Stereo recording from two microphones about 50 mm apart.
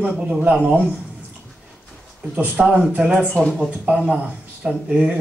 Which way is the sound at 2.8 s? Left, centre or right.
Centre.